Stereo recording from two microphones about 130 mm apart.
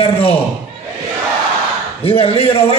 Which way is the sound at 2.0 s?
45° left (ahead or behind).